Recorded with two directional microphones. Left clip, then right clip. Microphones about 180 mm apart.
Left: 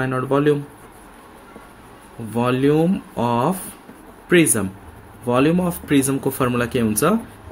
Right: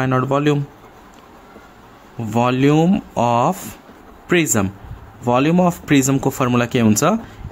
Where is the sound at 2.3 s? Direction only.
40° right (ahead or behind).